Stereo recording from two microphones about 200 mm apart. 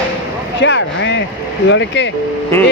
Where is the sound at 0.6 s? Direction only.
65° left (ahead or behind).